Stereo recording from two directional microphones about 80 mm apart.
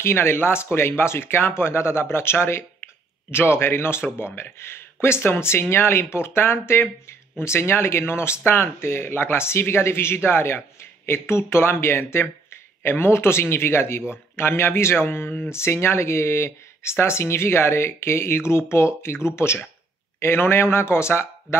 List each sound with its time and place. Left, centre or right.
0.0 s speech: left